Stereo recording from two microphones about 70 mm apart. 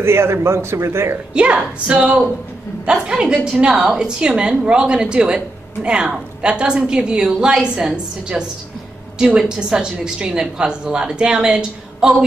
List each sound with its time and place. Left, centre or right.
0.0 s a man's voice: right
1.3 s speech: centre